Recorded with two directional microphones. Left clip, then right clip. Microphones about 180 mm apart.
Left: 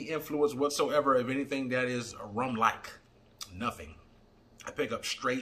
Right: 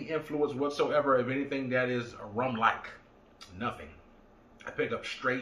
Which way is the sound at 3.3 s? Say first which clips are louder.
Left 1 dB; 15° left (ahead or behind).